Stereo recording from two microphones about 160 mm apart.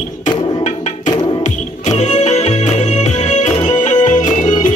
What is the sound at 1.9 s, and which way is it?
Music, 45° left (ahead or behind).